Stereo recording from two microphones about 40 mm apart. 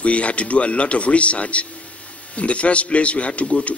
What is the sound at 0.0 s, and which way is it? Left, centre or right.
Speech, left.